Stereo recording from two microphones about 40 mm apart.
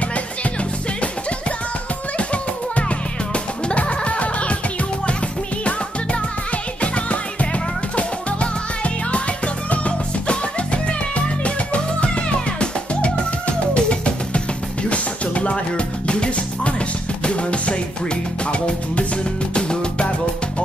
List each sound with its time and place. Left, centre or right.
0.1 s music: left
2.1 s music: left
6.8 s music: left
19.5 s music: left